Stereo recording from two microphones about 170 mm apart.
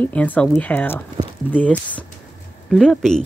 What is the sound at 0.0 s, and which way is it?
A child's voice, 10° left (ahead or behind).